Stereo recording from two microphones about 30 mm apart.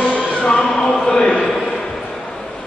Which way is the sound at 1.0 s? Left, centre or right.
Left.